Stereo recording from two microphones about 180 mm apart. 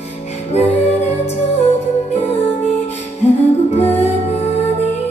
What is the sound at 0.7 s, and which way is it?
Music, 40° left (ahead or behind).